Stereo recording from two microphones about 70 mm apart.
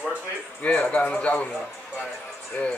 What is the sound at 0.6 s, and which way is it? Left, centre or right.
Speech, left.